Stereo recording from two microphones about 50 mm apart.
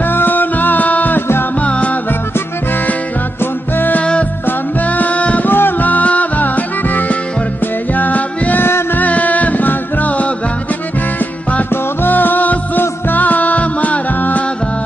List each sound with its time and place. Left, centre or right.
0.0 s music: left
3.7 s music: left
4.0 s music: left
4.5 s music: left
5.5 s music: left
11.7 s music: left